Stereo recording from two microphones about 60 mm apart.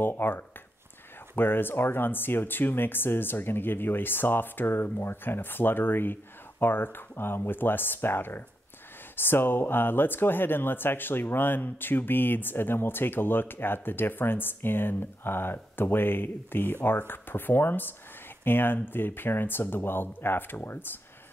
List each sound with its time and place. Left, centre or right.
0.0 s speech: left